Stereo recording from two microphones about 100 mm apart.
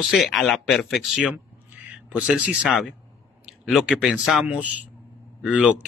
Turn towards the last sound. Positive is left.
turn(degrees=-10)  # may be behind; listen again after turning